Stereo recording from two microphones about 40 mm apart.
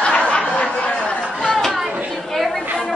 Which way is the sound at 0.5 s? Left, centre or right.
Left.